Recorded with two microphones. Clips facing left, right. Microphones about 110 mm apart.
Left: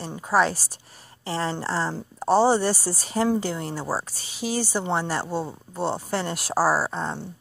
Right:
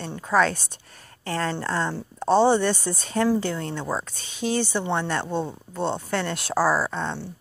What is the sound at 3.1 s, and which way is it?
A woman's voice, 25° left (ahead or behind).